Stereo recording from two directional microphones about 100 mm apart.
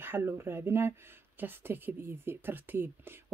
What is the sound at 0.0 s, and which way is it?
A woman's voice, 20° right (ahead or behind).